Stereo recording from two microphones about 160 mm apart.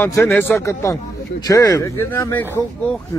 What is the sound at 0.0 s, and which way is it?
Speech, 15° left (ahead or behind).